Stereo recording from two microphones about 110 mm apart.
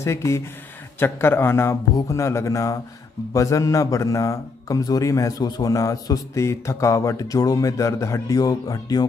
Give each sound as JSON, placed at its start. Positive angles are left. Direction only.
{"t": 0.0, "sound": "a man's voice", "side_deg": 25}